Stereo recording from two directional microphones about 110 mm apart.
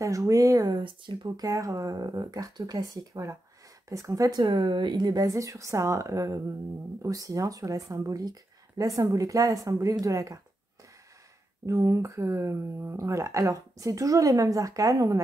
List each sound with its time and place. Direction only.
0.0 s speech: 30° right (ahead or behind)
1.2 s speech: 35° right (ahead or behind)
4.4 s speech: 50° right (ahead or behind); by 10.4 s 30° right (ahead or behind)
11.6 s speech: 30° right (ahead or behind)